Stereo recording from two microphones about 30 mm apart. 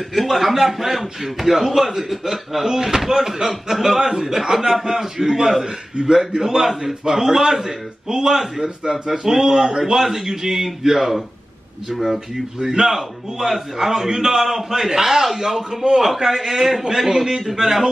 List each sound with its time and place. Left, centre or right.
0.1 s a man's voice: centre
11.9 s speech: centre
12.5 s a man's voice: centre